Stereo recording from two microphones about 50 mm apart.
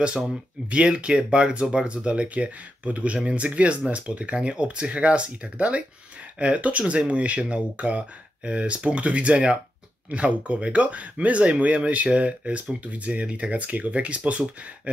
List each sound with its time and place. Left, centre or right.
0.7 s speech: right